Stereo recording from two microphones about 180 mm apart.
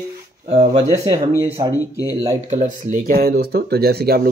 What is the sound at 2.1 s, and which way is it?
Speech, 20° right (ahead or behind).